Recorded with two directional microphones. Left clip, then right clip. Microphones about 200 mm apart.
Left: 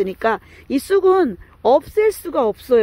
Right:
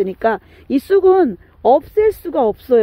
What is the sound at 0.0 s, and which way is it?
Speech, 10° right (ahead or behind).